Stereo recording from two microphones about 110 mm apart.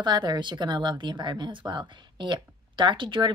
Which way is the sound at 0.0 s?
40° right (ahead or behind).